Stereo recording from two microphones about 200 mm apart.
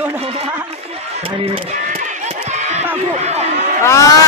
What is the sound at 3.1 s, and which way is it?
Speech, 35° right (ahead or behind).